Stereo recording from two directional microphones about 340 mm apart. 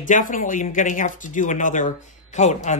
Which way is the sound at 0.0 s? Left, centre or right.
Left.